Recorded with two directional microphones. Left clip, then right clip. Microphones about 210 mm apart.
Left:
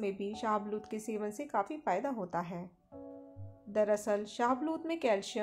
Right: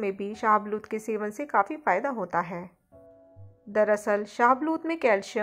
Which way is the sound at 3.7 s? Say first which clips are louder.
Right 7 dB; 20° right (ahead or behind).